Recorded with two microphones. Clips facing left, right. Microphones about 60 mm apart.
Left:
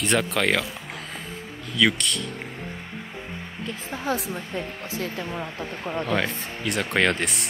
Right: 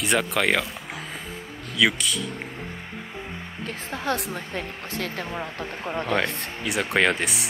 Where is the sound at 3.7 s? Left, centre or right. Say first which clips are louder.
Even; right.